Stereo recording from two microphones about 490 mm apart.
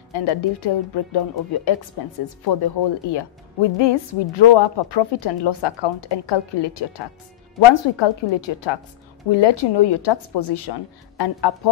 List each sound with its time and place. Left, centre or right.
0.1 s a woman's voice: left